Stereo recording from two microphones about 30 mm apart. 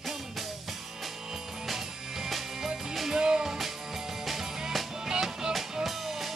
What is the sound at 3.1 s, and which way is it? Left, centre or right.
Music, right.